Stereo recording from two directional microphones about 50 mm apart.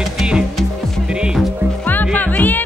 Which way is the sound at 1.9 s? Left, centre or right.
Left.